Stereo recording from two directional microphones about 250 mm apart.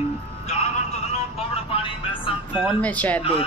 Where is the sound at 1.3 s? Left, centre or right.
Left.